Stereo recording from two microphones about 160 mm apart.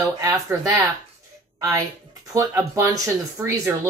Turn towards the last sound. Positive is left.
turn(degrees=-15)  # may be behind; listen again after turning